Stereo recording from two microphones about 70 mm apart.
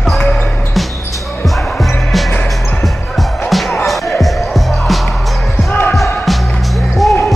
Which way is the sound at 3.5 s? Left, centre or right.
Centre.